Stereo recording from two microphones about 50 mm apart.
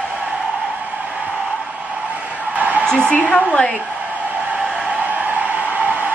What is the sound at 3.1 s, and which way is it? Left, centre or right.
Speech, left.